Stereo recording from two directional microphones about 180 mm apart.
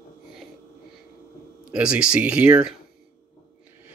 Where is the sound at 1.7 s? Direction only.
5° right (ahead or behind).